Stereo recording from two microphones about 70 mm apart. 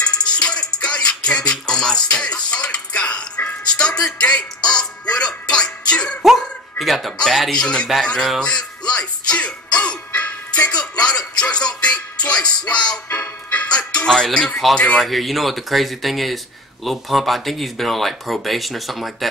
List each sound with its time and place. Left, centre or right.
0.0 s music: centre
6.2 s a man's voice: centre
8.4 s music: centre
15.0 s speech: centre